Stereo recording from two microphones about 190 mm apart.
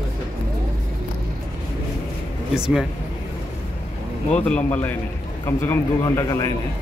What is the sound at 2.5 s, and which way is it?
Speech, 5° right (ahead or behind).